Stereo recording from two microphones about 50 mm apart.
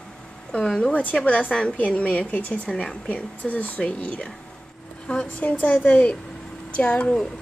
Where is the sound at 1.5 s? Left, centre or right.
Centre.